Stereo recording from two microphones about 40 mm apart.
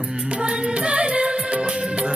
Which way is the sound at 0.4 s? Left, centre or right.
Right.